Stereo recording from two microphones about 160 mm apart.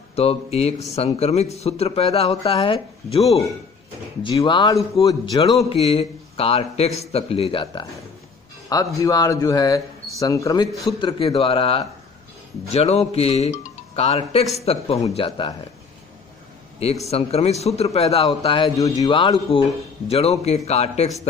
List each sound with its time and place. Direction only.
0.1 s speech: 40° left (ahead or behind)
8.6 s speech: 20° left (ahead or behind)
10.7 s a man's voice: centre (ahead or behind)
11.0 s speech: 35° left (ahead or behind)
17.1 s speech: 40° left (ahead or behind)